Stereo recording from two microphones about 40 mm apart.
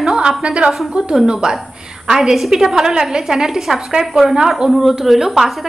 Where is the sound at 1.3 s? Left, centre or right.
Centre.